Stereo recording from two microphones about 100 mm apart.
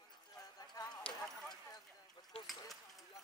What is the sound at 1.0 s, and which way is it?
Clip-clop, 5° left (ahead or behind).